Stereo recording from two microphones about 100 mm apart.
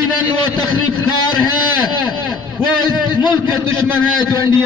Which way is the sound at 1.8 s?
45° left (ahead or behind).